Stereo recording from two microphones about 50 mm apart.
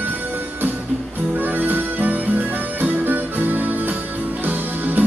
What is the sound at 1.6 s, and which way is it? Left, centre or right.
Music, right.